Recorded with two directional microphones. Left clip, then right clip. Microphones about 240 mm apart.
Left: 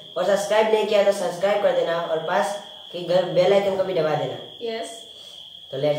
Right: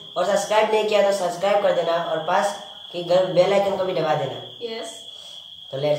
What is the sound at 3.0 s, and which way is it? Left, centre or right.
Speech, centre.